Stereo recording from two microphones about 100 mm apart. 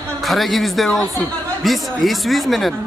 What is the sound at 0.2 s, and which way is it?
Speech, centre (ahead or behind).